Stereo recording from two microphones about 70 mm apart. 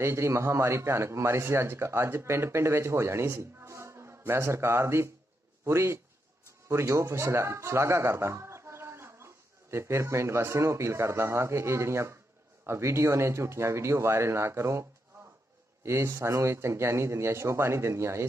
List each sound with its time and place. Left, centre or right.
0.0 s a man's voice: right